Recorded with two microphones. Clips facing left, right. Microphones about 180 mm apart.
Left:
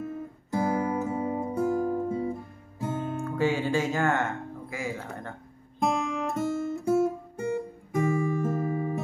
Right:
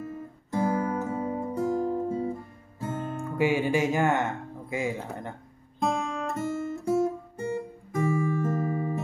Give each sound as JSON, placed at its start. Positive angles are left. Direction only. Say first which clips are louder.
{"t": 0.0, "sound": "music", "louder": "left 2 dB", "side_deg": 10}
{"t": 3.3, "sound": "speech", "louder": "right 2 dB", "side_deg": -15}
{"t": 5.8, "sound": "guitar", "louder": "left 1 dB", "side_deg": 10}
{"t": 8.2, "sound": "music", "louder": "even", "side_deg": 10}